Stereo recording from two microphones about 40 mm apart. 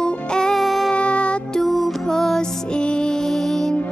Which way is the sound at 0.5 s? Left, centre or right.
Centre.